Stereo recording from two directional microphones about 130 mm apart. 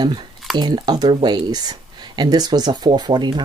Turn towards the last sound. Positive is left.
turn(degrees=-35)  # may be behind; listen again after turning